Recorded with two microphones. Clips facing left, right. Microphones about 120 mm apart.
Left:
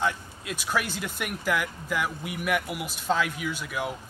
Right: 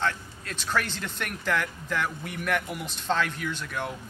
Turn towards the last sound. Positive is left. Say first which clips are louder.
# left 1 dB
turn(degrees=10)  # may be behind; listen again after turning